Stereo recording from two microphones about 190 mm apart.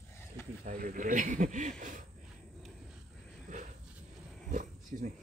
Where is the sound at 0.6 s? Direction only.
45° right (ahead or behind).